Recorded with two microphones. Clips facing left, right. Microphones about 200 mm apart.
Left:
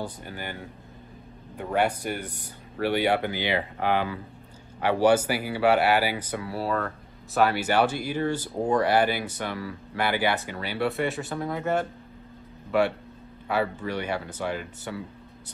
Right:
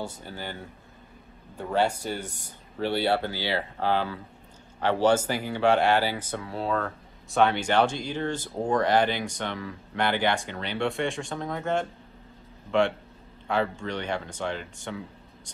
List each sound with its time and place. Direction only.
0.2 s speech: 15° left (ahead or behind)